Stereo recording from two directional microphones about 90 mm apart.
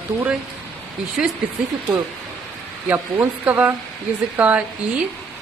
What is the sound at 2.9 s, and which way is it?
A man's voice, 20° right (ahead or behind).